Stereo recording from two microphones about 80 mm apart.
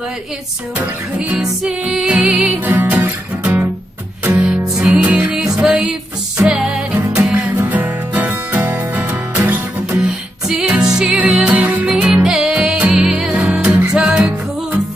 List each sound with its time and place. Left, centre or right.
1.3 s music: centre
2.7 s music: right; by 6.8 s centre
7.3 s music: right; by 14.3 s centre